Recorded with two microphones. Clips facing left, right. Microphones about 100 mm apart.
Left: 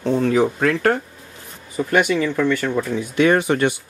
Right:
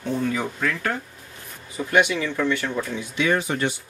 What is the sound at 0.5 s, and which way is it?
Speech, 60° left (ahead or behind).